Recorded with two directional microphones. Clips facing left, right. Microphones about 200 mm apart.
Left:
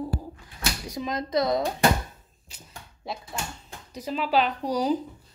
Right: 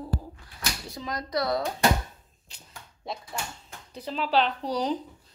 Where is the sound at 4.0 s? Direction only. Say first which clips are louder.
Left 1 dB; 10° left (ahead or behind).